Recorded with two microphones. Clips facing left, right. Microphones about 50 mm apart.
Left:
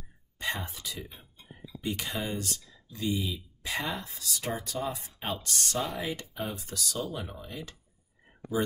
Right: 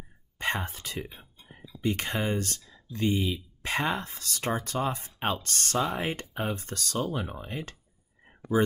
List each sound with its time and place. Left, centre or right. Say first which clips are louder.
0.4 s speech: right 4 dB; right
8.5 s speech: right 5 dB; centre